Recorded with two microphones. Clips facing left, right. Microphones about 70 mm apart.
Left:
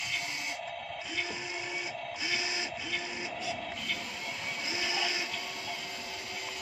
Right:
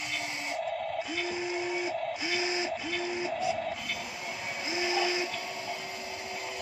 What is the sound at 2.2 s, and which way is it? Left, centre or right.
Printer, right.